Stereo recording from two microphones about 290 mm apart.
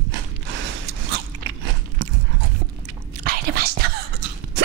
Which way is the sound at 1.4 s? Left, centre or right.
Right.